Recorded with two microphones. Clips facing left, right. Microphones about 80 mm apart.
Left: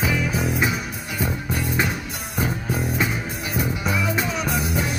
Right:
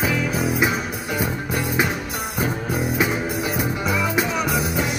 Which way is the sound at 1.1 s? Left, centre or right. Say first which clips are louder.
Right 1 dB; centre.